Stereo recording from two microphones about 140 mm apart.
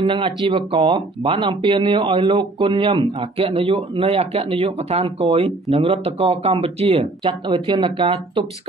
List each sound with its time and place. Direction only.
0.0 s speech: 35° right (ahead or behind)